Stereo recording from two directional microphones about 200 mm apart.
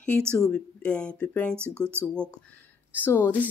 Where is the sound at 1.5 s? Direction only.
10° right (ahead or behind).